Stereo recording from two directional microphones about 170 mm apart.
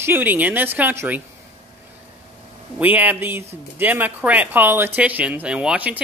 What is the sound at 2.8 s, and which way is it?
Speech, 10° right (ahead or behind).